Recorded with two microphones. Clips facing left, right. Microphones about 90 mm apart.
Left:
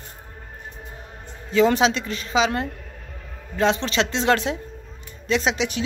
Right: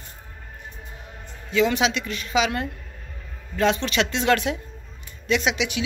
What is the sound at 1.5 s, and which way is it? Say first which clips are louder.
A woman's voice: left 3 dB; 35° left (ahead or behind).